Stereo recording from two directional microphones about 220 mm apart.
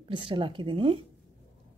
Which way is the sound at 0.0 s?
25° right (ahead or behind).